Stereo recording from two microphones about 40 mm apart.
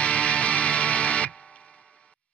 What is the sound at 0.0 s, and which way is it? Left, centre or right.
Music, left.